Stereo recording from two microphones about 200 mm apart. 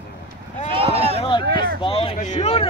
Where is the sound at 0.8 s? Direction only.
30° right (ahead or behind).